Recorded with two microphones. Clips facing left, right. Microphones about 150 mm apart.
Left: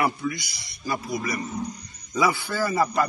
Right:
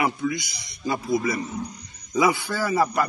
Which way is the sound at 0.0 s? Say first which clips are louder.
Right 1 dB; 20° right (ahead or behind).